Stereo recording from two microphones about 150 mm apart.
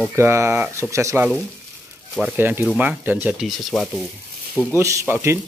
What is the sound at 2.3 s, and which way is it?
Speech, 15° right (ahead or behind).